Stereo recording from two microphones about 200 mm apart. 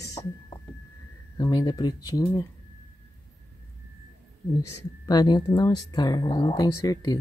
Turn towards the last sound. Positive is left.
turn(degrees=20)  # may be behind; listen again after turning